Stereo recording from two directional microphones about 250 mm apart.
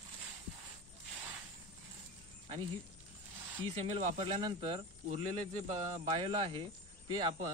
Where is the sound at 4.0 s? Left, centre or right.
Right.